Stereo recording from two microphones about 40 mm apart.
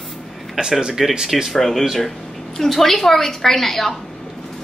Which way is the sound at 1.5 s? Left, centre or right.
Centre.